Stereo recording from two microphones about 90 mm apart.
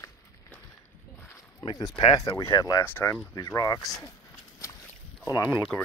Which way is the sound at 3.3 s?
45° left (ahead or behind).